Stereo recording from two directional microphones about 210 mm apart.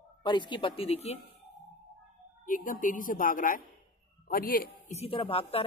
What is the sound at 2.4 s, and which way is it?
A man's voice, 40° left (ahead or behind).